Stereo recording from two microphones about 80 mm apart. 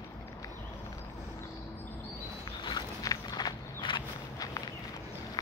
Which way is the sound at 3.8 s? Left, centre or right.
Left.